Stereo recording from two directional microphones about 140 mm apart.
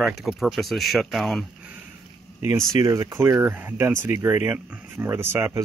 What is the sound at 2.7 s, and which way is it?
Speech, 25° right (ahead or behind).